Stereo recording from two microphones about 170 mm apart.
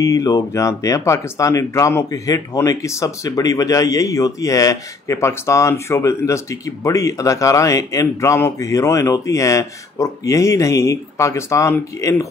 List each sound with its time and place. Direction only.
0.0 s speech: 20° left (ahead or behind)